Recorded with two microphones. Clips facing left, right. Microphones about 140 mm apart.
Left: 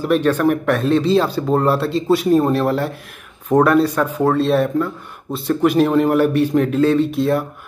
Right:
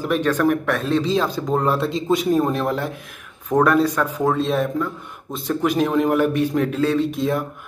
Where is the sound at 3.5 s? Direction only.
10° left (ahead or behind).